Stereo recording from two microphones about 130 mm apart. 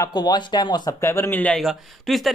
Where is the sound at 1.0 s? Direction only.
20° left (ahead or behind).